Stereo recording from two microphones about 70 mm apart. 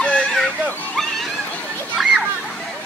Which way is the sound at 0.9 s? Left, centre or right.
Centre.